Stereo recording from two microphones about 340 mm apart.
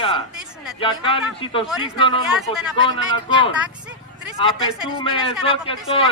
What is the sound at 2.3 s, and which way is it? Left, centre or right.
Speech, centre.